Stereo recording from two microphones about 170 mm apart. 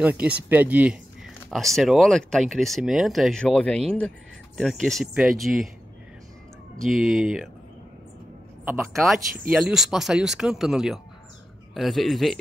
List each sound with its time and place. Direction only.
0.0 s speech: 10° right (ahead or behind)
6.9 s speech: centre (ahead or behind)
8.9 s speech: centre (ahead or behind)